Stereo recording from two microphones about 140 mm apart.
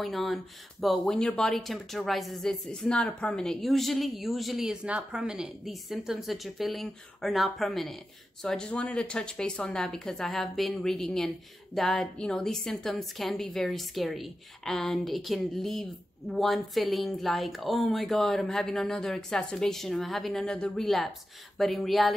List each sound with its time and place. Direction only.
0.0 s speech: centre (ahead or behind)